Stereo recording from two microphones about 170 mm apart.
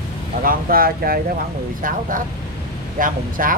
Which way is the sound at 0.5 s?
60° right (ahead or behind).